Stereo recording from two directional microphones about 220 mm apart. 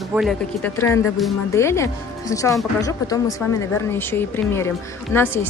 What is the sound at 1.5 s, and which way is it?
A woman's voice, 15° left (ahead or behind).